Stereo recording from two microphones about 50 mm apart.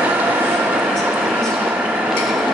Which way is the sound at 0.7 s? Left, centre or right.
Right.